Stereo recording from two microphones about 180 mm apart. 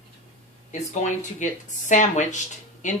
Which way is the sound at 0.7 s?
40° left (ahead or behind).